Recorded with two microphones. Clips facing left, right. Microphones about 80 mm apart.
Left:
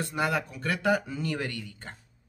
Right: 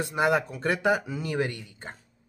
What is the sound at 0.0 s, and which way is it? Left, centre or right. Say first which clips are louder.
Speech: right 4 dB; right.